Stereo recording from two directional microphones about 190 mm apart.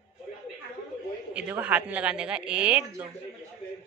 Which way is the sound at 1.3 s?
10° right (ahead or behind).